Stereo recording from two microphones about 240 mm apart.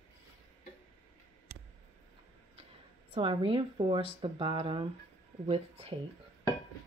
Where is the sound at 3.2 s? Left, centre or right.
Right.